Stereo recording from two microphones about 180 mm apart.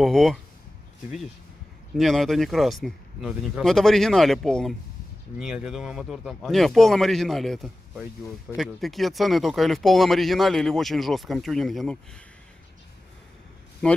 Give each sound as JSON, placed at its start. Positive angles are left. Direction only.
{"t": 0.0, "sound": "speech", "side_deg": 0}
{"t": 2.0, "sound": "speech", "side_deg": 0}